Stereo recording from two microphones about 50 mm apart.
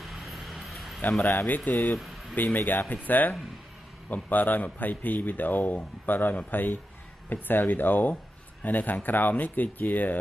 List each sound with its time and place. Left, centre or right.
0.0 s vehicle: centre
1.5 s speech: left